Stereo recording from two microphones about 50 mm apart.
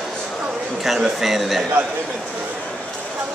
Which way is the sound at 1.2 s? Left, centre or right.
Centre.